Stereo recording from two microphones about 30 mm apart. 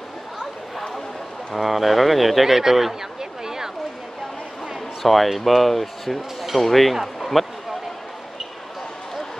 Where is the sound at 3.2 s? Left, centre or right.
Centre.